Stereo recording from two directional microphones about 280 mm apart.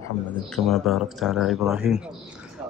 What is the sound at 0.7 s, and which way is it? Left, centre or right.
Speech, centre.